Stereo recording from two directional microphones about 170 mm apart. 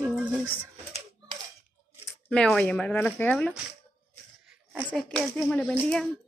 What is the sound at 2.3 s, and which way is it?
Speech, 5° left (ahead or behind).